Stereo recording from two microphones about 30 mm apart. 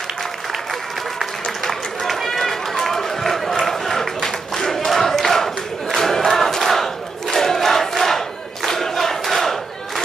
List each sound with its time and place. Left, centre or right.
1.6 s run: centre
4.2 s a sound: centre
4.7 s battle cry: centre
5.9 s crowd: centre
8.6 s battle cry: centre